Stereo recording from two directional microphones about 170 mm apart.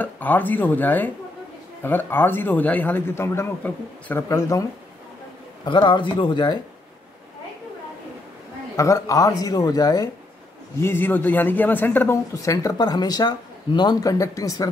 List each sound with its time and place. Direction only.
0.0 s a man's voice: 10° left (ahead or behind)
5.7 s speech: 30° left (ahead or behind)
8.7 s a man's voice: 20° left (ahead or behind)